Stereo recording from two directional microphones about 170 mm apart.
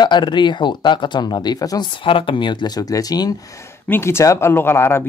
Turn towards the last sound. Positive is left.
turn(degrees=15)  # may be behind; listen again after turning